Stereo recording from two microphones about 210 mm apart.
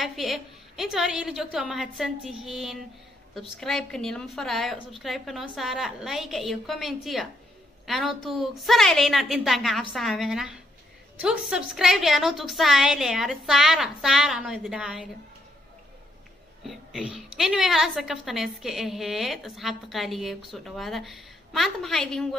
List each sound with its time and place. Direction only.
0.0 s a woman's voice: centre (ahead or behind)
16.6 s a woman's voice: 5° right (ahead or behind)